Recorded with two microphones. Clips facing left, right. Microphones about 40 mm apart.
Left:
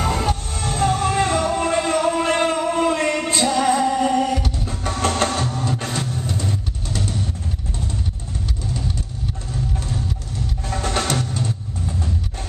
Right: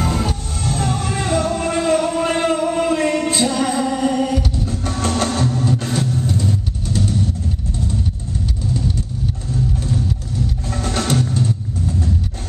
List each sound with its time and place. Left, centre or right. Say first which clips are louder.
0.0 s music: even; centre
5.3 s printer: right 4 dB; centre
5.9 s vehicle: right 5 dB; centre
10.7 s percussion: left 2 dB; centre
11.1 s music: right 4 dB; centre